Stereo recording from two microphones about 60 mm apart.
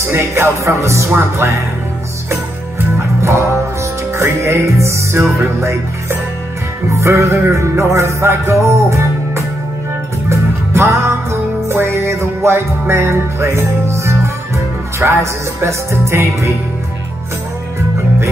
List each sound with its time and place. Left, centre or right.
0.0 s music: right
3.2 s music: right
15.0 s music: right
15.6 s music: right